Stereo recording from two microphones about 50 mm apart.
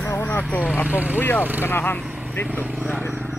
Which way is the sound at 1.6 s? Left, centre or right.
Left.